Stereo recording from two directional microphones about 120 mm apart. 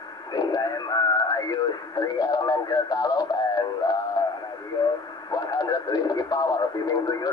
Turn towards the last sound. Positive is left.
turn(degrees=30)  # may be behind; listen again after turning